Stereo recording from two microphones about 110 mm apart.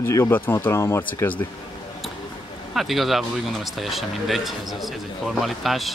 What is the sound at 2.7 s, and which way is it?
Speech, centre (ahead or behind).